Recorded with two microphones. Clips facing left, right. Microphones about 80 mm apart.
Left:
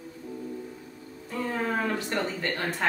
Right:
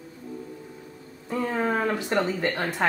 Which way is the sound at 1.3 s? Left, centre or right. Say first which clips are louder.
Right 4 dB; centre.